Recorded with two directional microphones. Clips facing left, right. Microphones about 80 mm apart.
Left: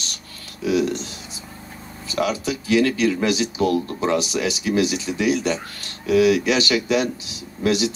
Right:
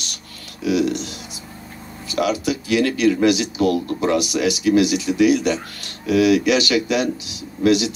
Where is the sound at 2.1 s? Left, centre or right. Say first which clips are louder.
Right 2 dB; left.